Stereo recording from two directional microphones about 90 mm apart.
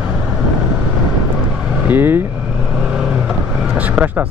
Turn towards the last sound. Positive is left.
turn(degrees=-15)  # may be behind; listen again after turning